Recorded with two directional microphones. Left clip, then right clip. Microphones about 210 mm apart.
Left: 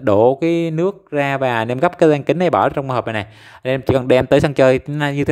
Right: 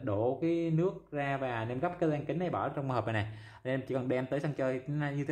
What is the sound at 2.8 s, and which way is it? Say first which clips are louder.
Speech: left 13 dB; 35° left (ahead or behind).